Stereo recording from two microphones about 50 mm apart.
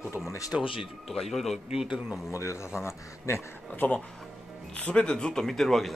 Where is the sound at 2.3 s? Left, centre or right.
Left.